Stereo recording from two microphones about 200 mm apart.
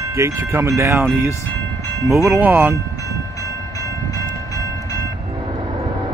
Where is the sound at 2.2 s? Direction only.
10° right (ahead or behind).